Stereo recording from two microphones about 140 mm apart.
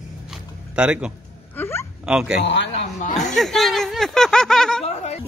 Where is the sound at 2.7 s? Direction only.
60° left (ahead or behind).